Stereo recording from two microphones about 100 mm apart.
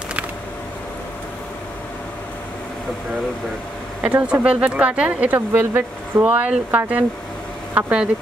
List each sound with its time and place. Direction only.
4.0 s speech: 15° right (ahead or behind)
6.2 s speech: 10° right (ahead or behind)